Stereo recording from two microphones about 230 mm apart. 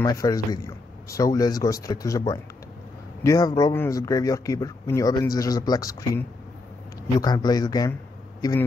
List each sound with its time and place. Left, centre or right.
0.0 s speech: centre